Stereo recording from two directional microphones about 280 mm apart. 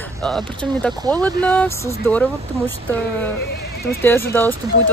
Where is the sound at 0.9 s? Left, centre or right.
Centre.